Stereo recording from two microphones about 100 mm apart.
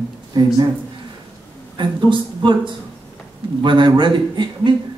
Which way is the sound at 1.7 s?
50° right (ahead or behind).